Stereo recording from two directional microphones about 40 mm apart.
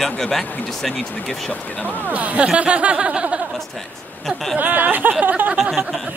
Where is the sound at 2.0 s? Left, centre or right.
Right.